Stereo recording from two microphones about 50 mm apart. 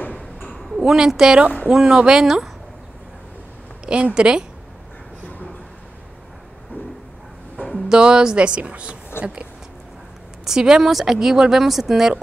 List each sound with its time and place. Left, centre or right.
0.0 s a sound: left
0.7 s a woman's voice: centre
2.2 s speech: centre
3.8 s speech: centre
7.5 s music: left
7.9 s speech: centre
10.4 s speech: centre